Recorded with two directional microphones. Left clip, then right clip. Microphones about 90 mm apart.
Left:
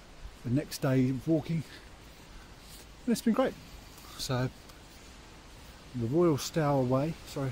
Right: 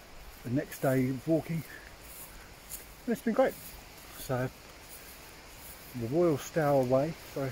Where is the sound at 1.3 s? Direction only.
5° left (ahead or behind).